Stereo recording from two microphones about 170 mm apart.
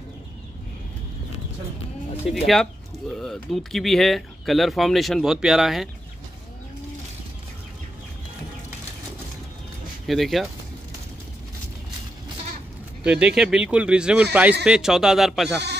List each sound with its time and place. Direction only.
2.3 s speech: centre (ahead or behind)
10.0 s speech: centre (ahead or behind)
13.0 s speech: 5° right (ahead or behind)